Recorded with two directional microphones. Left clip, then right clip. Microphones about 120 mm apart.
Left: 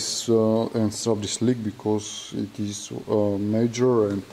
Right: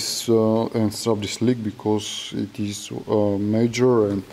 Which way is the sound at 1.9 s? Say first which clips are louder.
Right 3 dB; 15° right (ahead or behind).